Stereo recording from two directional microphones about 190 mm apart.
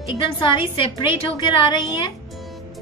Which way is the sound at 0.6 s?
25° left (ahead or behind).